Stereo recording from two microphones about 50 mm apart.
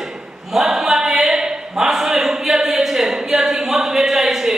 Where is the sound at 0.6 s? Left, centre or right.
Centre.